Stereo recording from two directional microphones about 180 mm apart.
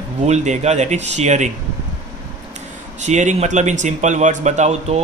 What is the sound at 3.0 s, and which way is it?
Speech, 40° right (ahead or behind).